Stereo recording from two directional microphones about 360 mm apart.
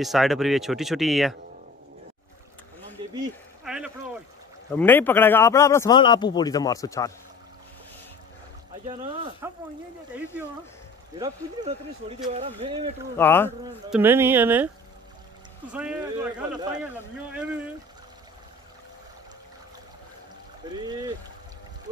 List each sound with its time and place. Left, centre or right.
0.0 s speech: centre
3.6 s a sound: centre
4.6 s a man's voice: centre
8.8 s speech: centre
11.1 s speech: centre
13.2 s speech: centre
15.7 s speech: centre
20.7 s speech: centre